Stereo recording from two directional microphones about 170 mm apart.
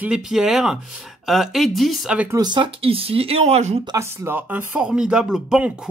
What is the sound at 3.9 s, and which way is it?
Speech, 15° right (ahead or behind).